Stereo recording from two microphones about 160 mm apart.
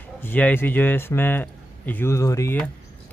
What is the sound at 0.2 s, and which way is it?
Speech, 10° left (ahead or behind).